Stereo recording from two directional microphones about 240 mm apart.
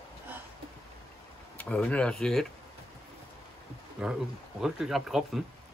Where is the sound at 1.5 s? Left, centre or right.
Centre.